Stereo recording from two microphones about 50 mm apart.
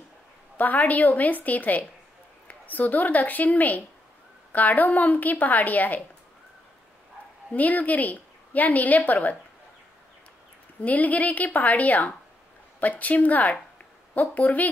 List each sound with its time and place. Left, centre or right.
0.6 s a woman's voice: left
7.5 s a woman's voice: left
10.8 s a woman's voice: left